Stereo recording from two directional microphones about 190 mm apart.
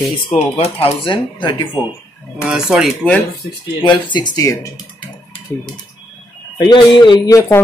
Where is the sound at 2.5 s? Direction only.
5° right (ahead or behind).